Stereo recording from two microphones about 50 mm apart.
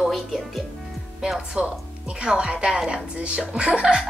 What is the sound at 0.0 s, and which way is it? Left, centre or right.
Speech, centre.